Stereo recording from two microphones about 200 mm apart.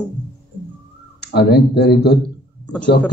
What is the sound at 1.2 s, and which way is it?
Speech, 55° left (ahead or behind).